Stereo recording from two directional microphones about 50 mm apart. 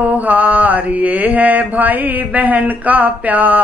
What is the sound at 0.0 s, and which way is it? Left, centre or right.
A woman's voice, right.